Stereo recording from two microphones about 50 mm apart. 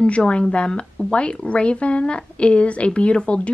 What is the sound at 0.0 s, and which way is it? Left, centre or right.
A woman's voice, left.